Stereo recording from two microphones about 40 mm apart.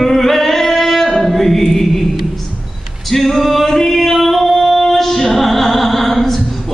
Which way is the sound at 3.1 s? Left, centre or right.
Centre.